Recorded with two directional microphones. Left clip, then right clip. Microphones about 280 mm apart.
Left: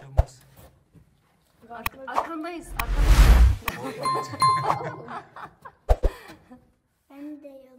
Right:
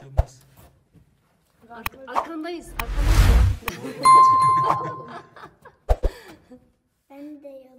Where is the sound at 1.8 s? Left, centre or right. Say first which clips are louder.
Right 1 dB; centre.